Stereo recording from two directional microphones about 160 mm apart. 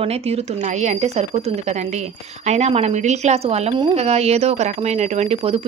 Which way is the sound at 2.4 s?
45° right (ahead or behind).